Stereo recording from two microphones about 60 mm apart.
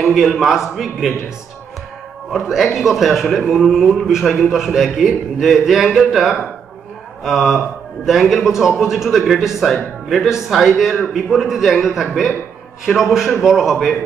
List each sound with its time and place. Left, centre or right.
0.0 s a man's voice: centre
2.3 s a man's voice: centre